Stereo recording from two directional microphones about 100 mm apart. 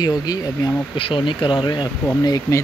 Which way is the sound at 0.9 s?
60° left (ahead or behind).